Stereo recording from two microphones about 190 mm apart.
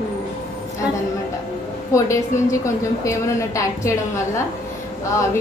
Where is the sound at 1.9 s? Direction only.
15° left (ahead or behind).